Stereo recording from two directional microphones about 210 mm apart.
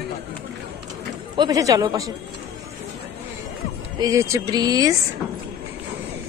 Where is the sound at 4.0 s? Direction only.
15° right (ahead or behind).